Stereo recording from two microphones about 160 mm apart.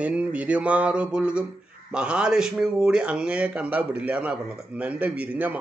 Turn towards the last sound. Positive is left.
turn(degrees=-10)  # may be behind; listen again after turning